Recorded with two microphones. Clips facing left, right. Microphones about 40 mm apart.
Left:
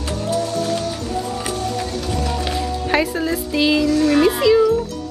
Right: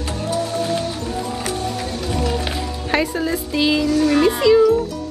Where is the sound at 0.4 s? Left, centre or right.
Right.